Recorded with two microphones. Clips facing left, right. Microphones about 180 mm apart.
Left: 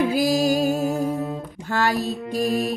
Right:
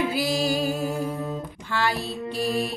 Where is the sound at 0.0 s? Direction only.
45° left (ahead or behind).